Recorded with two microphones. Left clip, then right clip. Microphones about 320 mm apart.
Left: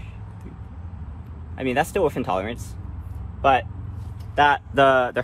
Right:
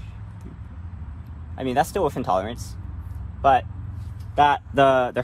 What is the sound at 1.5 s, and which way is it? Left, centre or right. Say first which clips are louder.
Speech: even; centre.